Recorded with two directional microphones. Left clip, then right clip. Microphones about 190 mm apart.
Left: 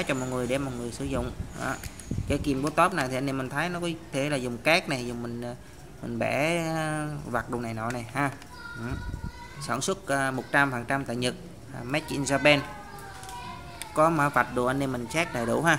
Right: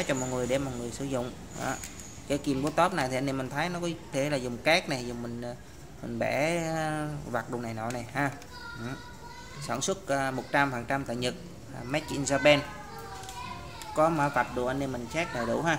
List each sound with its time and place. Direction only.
0.0 s speech: 10° left (ahead or behind)
9.7 s speech: 15° left (ahead or behind)
13.9 s speech: 20° left (ahead or behind)